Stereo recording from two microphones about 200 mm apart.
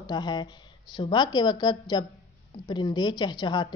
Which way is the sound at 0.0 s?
20° left (ahead or behind).